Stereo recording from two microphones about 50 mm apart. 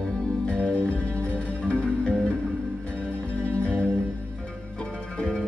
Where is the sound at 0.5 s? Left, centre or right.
Left.